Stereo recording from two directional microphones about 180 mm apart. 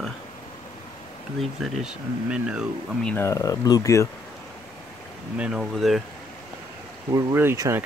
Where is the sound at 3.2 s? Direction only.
20° left (ahead or behind).